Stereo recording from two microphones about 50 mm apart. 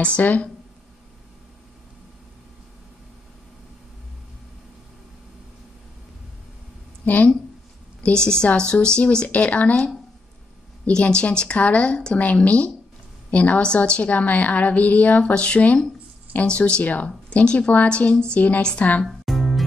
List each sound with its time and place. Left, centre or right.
0.2 s a woman's voice: left
7.1 s a woman's voice: left
8.0 s a woman's voice: centre
10.9 s a woman's voice: centre
19.0 s music: centre